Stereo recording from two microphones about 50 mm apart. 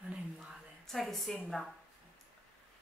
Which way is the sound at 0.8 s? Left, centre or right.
Centre.